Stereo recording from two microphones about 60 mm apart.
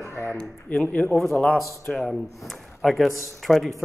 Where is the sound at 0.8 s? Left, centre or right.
Left.